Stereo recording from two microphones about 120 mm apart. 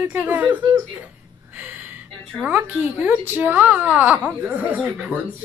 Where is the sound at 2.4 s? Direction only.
15° right (ahead or behind).